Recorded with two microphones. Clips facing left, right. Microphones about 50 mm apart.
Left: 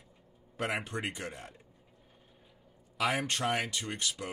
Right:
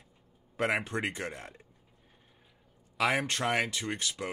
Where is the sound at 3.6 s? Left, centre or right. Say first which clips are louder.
Right 4 dB; centre.